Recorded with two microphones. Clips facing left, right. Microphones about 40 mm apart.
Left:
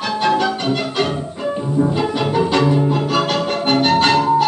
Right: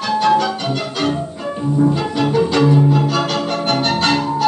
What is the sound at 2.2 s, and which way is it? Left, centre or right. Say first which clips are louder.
Music: right 2 dB; centre.